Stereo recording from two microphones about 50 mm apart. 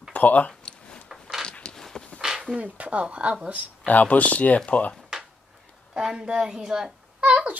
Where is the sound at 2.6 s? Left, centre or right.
Right.